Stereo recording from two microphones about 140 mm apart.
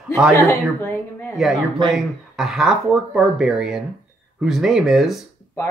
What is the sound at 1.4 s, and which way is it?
Speech, 5° right (ahead or behind).